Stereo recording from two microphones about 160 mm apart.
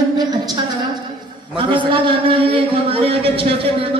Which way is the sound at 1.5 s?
35° right (ahead or behind).